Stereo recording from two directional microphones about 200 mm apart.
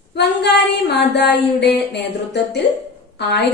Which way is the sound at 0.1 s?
55° left (ahead or behind).